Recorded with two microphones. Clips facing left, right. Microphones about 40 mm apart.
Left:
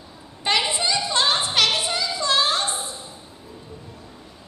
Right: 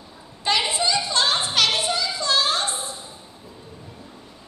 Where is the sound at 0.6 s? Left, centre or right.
Left.